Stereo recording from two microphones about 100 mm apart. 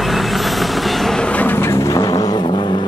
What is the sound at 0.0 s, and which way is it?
Vehicle, centre (ahead or behind).